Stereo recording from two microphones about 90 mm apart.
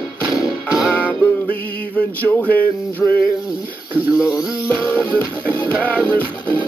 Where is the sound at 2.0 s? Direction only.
15° left (ahead or behind).